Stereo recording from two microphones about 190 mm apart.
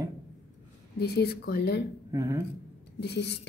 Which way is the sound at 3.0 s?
60° left (ahead or behind).